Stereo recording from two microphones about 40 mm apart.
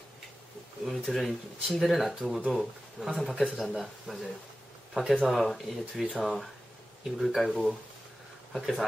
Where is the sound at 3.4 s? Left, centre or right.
Centre.